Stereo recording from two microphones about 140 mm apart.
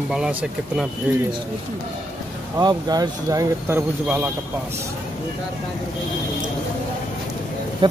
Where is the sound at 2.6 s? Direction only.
30° right (ahead or behind); by 4.3 s 15° right (ahead or behind).